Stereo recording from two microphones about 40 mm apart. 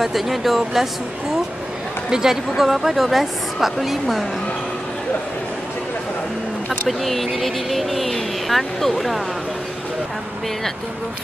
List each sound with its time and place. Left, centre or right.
0.0 s speech: centre
2.0 s speech: centre
6.9 s speech: centre